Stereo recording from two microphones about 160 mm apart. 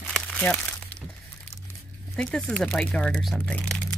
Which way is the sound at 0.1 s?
5° left (ahead or behind).